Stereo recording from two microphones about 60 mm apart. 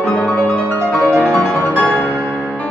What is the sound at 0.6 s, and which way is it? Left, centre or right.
Music, right.